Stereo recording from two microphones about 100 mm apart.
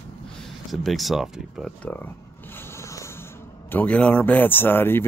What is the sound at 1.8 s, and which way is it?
Speech, 20° left (ahead or behind).